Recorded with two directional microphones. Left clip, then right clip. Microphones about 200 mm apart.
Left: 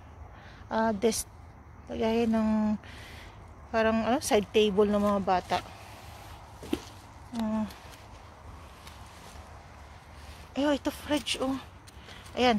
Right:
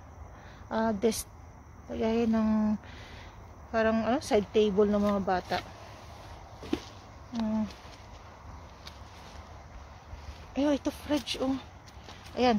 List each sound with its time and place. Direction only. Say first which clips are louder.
0.7 s speech: left 1 dB; centre (ahead or behind)
7.3 s speech: even; 45° left (ahead or behind)
10.5 s speech: left 1 dB; 10° right (ahead or behind)